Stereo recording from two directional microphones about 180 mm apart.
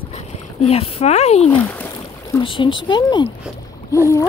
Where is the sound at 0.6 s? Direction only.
35° left (ahead or behind).